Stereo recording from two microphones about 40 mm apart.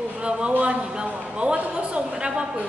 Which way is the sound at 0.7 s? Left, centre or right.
Right.